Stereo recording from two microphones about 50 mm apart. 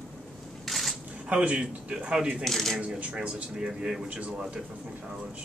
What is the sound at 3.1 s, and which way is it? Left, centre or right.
Speech, centre.